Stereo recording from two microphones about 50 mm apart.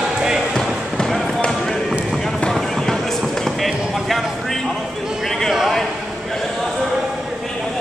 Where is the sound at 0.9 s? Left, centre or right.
Centre.